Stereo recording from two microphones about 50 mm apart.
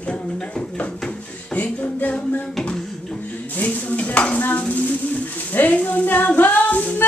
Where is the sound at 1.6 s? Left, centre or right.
Left.